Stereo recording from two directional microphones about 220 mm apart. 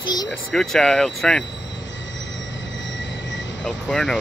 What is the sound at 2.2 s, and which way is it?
Train wheels squealing, 55° left (ahead or behind).